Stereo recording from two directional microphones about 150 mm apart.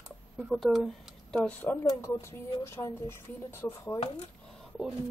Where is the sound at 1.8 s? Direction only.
20° left (ahead or behind).